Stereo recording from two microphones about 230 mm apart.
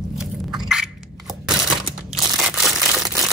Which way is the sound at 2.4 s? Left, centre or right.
Centre.